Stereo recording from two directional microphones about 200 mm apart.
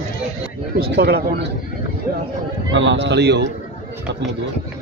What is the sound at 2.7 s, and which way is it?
Speech, 65° right (ahead or behind).